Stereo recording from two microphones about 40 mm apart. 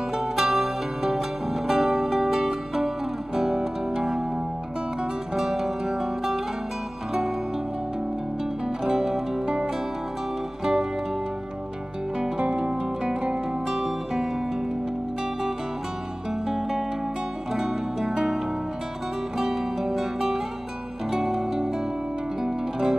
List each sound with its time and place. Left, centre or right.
0.1 s music: centre
5.3 s music: centre
8.8 s music: centre
12.2 s music: right
13.7 s music: centre
16.4 s music: centre